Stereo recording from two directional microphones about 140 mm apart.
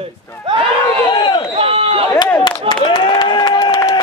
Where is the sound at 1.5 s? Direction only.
45° right (ahead or behind).